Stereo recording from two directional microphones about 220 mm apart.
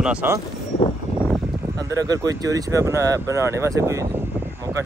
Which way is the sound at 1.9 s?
15° right (ahead or behind).